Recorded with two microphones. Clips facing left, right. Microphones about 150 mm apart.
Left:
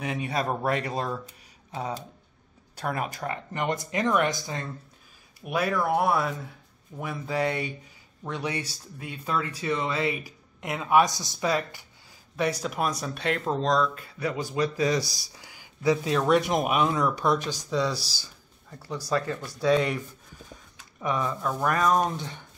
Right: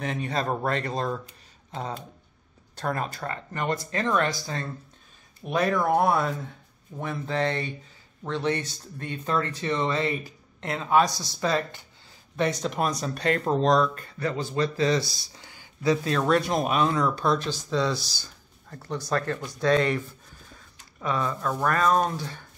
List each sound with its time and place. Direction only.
0.0 s speech: 10° left (ahead or behind)
5.4 s speech: 5° left (ahead or behind)